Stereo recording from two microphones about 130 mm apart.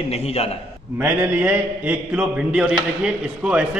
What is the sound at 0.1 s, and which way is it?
Speech, 50° left (ahead or behind).